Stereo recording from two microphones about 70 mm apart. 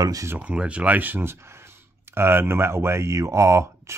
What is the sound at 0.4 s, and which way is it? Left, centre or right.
Speech, centre.